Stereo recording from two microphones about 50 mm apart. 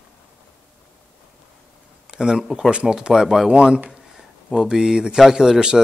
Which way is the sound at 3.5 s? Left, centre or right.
Right.